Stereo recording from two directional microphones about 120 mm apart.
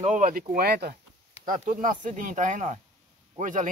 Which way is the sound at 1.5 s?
90° right.